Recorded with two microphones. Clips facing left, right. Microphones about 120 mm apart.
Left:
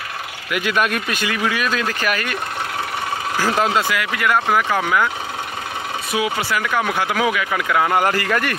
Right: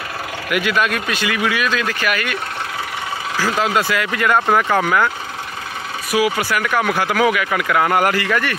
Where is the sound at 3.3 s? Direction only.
15° left (ahead or behind).